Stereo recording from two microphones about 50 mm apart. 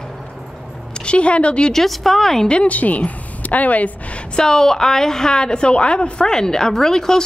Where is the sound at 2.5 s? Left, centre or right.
Left.